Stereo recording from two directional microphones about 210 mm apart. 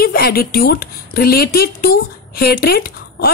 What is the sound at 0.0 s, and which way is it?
A woman's voice, 45° left (ahead or behind).